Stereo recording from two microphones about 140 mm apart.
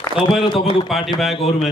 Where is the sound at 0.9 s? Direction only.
Centre (ahead or behind).